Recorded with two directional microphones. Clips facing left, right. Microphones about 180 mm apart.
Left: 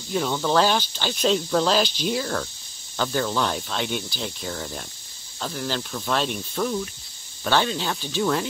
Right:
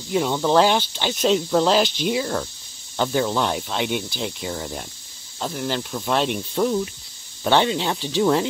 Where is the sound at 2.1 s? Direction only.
5° right (ahead or behind).